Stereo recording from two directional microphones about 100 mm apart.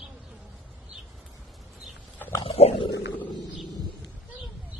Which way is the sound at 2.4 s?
80° left.